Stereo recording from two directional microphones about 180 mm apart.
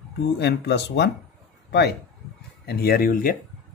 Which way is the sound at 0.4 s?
70° left (ahead or behind).